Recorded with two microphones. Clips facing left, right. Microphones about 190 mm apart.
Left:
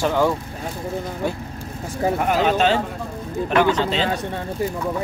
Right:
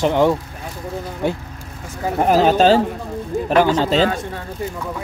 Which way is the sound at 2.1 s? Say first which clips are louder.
Right 7 dB; 35° right (ahead or behind).